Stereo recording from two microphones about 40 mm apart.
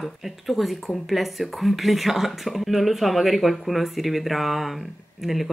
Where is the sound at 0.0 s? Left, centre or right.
Centre.